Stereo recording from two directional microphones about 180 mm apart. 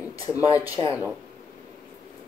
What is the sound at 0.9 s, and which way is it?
Speech, 5° right (ahead or behind).